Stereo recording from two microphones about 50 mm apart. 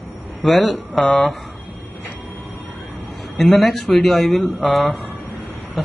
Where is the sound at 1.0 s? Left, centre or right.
Centre.